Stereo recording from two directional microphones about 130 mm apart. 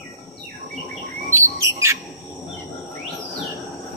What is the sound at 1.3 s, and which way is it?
Bird, 20° right (ahead or behind).